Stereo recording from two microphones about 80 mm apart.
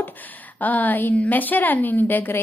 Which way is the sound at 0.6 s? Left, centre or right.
Left.